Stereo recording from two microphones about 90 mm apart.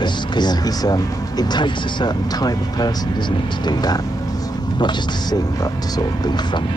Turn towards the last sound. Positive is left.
turn(degrees=50)  # may be behind; listen again after turning